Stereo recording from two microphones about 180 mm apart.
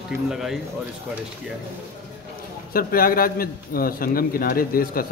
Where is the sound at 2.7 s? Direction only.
55° left (ahead or behind).